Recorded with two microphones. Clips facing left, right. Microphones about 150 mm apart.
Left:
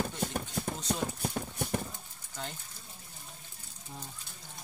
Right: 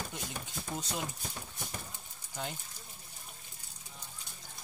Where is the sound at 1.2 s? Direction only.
55° left (ahead or behind).